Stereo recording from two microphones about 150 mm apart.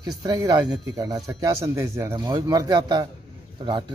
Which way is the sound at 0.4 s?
25° right (ahead or behind).